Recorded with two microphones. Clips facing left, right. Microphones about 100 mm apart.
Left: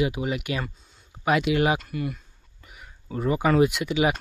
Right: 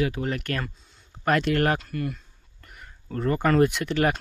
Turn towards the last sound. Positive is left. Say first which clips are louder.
# even
turn(degrees=5)  # may be behind; listen again after turning